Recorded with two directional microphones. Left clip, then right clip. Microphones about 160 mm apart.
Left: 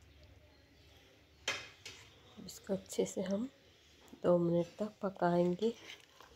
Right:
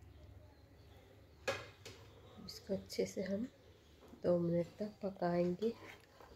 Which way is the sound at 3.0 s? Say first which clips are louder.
Left 4 dB; 25° left (ahead or behind).